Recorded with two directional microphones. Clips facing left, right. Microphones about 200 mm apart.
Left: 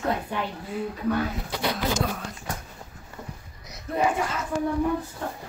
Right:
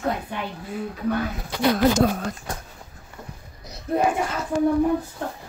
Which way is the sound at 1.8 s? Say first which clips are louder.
Right 8 dB; 50° right (ahead or behind).